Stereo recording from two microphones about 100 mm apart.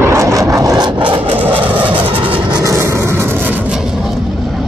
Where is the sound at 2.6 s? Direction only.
30° right (ahead or behind).